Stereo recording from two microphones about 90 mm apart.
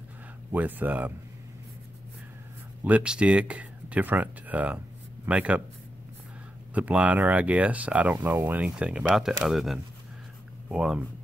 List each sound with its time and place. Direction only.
0.5 s speech: 20° right (ahead or behind)
2.8 s speech: 15° right (ahead or behind)
6.7 s speech: 15° right (ahead or behind)